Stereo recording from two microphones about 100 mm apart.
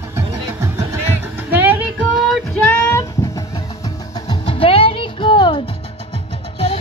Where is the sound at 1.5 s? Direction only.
20° right (ahead or behind).